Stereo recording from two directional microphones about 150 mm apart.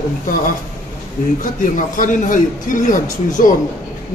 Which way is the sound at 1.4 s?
60° left (ahead or behind).